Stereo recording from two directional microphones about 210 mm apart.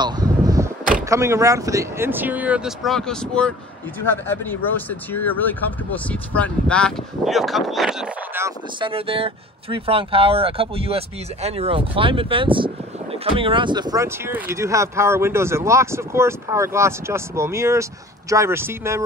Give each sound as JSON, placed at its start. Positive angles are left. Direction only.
{"t": 0.0, "sound": "arrow", "side_deg": -15}
{"t": 1.0, "sound": "speech", "side_deg": -15}
{"t": 8.5, "sound": "speech", "side_deg": -25}